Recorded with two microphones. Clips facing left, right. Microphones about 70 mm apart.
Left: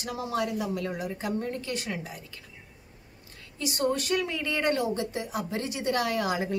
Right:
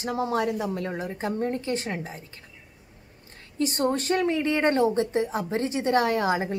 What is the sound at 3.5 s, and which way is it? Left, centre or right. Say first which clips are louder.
Speech: right 3 dB; right.